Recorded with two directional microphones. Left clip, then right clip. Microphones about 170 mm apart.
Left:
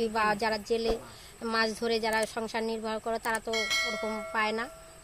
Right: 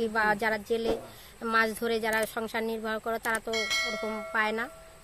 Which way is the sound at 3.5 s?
Centre (ahead or behind).